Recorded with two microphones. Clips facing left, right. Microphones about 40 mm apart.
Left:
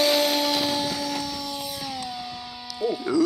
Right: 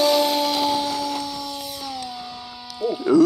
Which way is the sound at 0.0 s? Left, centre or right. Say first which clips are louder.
Right 3 dB; centre.